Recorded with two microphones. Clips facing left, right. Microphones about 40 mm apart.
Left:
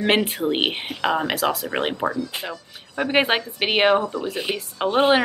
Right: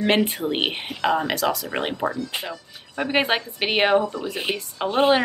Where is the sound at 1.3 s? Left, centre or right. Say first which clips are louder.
Left 1 dB; left.